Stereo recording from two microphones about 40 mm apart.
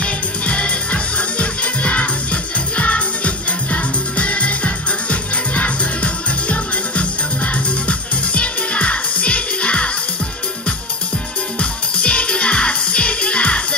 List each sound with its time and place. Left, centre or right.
0.0 s music: left
8.4 s music: left
12.0 s music: left